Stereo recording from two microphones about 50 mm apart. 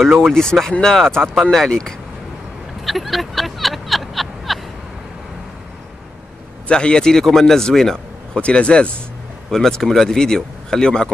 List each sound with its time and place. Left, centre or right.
0.0 s speech: centre
2.8 s a sound: centre
6.7 s speech: centre
8.4 s speech: left
9.5 s speech: centre